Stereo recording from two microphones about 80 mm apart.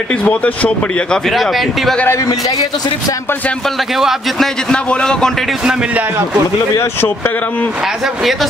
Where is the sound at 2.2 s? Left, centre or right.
Left.